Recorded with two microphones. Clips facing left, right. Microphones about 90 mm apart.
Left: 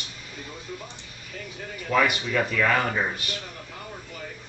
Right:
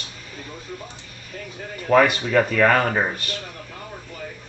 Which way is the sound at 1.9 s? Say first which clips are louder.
Right 7 dB; 50° right (ahead or behind).